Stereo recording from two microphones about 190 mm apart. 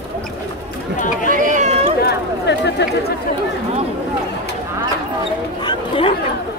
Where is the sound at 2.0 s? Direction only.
65° left (ahead or behind).